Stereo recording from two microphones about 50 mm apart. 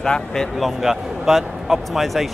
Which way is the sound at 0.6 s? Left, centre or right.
Centre.